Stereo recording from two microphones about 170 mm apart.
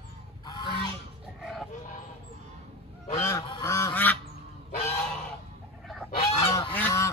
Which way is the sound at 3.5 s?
20° left (ahead or behind).